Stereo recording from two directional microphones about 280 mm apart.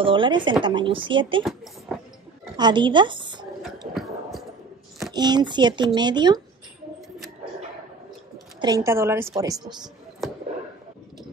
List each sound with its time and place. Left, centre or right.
0.0 s a woman's voice: centre
1.4 s speech: centre
2.5 s a woman's voice: centre
3.9 s a sound: centre
5.0 s a woman's voice: centre
8.5 s a woman's voice: centre
10.2 s a sound: centre